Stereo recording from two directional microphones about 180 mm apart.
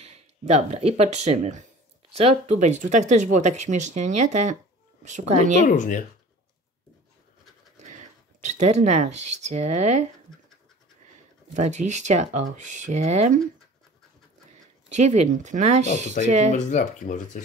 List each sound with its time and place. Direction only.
0.0 s speech: 40° right (ahead or behind)
5.7 s speech: 45° left (ahead or behind)
7.7 s speech: 40° right (ahead or behind)
11.5 s speech: 40° right (ahead or behind)
14.9 s speech: 40° right (ahead or behind)
16.5 s speech: 45° left (ahead or behind)